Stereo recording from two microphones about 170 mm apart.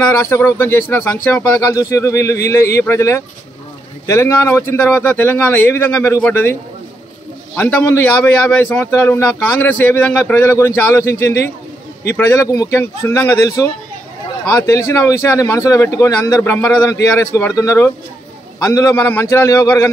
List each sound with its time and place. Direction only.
0.2 s a man's voice: 15° left (ahead or behind)
7.5 s a man's voice: 15° left (ahead or behind)